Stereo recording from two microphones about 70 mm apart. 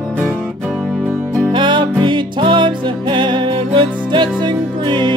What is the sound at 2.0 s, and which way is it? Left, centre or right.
Music, right.